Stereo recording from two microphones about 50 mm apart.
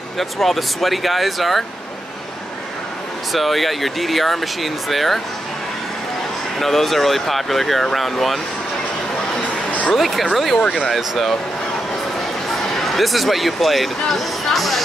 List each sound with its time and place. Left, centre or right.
0.2 s speech: centre
3.3 s speech: centre
6.6 s speech: centre
9.4 s a sound: left
9.9 s speech: centre
12.4 s speech: centre